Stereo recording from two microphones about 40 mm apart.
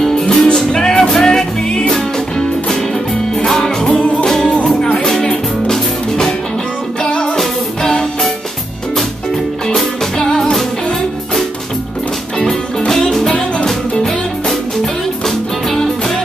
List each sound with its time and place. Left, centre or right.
0.0 s music: centre
3.3 s music: centre
7.0 s music: left
7.3 s music: centre
10.1 s music: centre
12.4 s music: centre
15.2 s music: centre